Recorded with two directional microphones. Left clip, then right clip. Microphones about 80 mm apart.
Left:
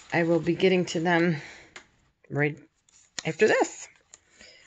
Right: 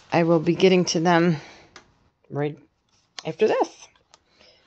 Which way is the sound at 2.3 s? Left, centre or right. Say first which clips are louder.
Left 1 dB; centre.